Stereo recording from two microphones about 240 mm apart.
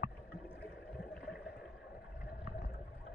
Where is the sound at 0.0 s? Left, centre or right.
Left.